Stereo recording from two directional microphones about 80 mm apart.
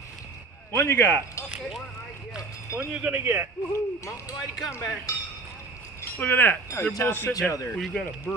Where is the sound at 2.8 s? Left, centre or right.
Right.